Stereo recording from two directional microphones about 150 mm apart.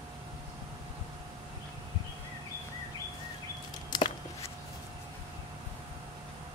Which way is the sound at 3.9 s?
30° left (ahead or behind).